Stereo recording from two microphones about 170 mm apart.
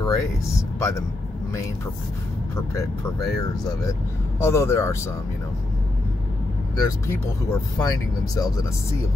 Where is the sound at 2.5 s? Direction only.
15° left (ahead or behind).